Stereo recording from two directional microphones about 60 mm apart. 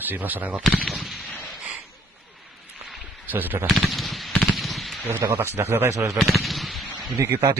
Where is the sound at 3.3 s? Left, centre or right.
Right.